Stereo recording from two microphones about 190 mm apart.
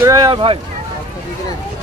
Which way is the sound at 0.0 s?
20° right (ahead or behind).